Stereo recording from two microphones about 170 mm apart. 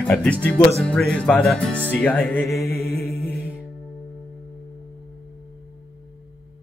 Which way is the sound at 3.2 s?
15° left (ahead or behind).